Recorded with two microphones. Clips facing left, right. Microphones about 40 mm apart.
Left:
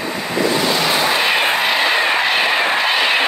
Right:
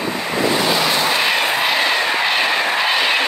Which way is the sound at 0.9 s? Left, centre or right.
Centre.